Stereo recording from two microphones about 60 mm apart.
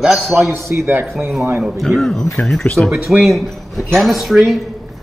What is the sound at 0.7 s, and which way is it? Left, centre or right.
Speech, right.